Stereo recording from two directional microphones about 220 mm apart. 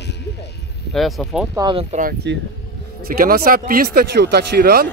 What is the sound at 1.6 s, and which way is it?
Speech, 25° right (ahead or behind).